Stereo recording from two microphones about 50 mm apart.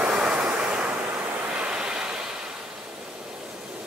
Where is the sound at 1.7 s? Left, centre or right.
Centre.